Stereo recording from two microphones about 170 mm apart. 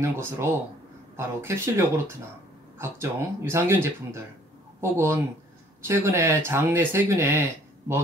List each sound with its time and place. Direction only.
0.0 s speech: 15° right (ahead or behind)